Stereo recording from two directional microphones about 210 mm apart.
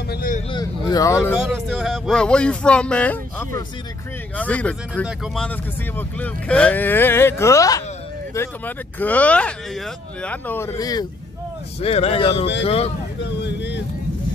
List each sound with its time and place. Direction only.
0.1 s vehicle: 40° left (ahead or behind)
0.5 s speech: 20° left (ahead or behind)
1.3 s speech: centre (ahead or behind); by 11.1 s 20° left (ahead or behind)
11.8 s speech: 30° left (ahead or behind)
13.2 s speech: 55° left (ahead or behind)